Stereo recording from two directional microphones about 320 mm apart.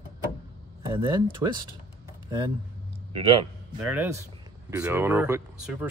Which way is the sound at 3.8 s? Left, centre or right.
Centre.